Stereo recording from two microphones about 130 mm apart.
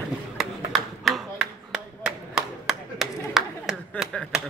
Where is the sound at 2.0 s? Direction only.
5° right (ahead or behind).